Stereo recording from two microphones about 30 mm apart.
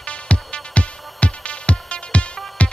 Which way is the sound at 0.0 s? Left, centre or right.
Left.